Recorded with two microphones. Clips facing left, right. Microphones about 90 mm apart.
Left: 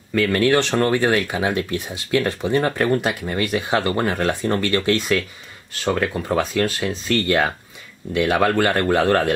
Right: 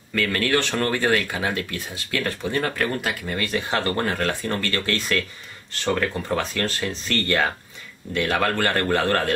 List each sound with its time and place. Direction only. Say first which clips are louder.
0.1 s speech: left 5 dB; 15° left (ahead or behind)